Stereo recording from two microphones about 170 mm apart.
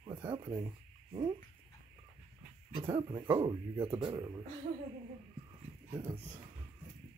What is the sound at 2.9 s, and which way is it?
A man's voice, 30° right (ahead or behind).